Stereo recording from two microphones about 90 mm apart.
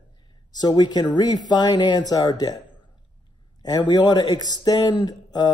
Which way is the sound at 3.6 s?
50° left (ahead or behind).